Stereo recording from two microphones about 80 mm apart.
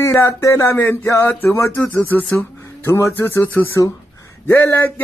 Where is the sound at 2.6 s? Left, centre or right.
Left.